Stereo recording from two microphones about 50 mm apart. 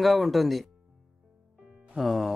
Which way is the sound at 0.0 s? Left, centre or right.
Centre.